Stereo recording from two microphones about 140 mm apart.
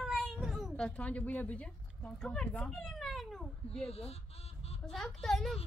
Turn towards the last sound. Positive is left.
turn(degrees=0)  # may be behind; listen again after turning